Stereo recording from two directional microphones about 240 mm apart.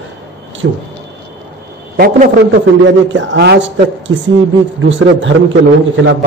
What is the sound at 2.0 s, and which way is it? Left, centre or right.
A man's voice, right.